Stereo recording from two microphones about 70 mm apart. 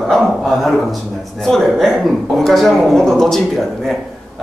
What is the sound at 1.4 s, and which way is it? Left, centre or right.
A woman's voice, centre.